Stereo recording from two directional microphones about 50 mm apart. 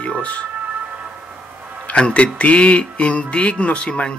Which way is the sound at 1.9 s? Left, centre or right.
Left.